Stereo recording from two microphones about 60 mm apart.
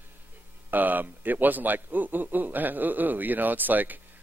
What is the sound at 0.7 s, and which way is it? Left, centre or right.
A man's voice, right.